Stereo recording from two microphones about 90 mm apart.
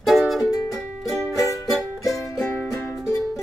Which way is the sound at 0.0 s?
Centre (ahead or behind).